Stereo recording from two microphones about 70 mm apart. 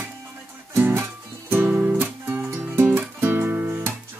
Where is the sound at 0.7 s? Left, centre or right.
Right.